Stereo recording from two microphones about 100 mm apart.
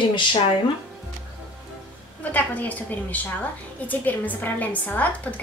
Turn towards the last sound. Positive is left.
turn(degrees=15)  # may be behind; listen again after turning